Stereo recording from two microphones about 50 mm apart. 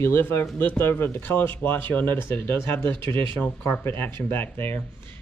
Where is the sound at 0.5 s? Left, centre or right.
Left.